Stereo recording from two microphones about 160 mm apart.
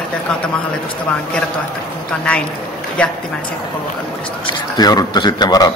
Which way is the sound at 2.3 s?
5° left (ahead or behind).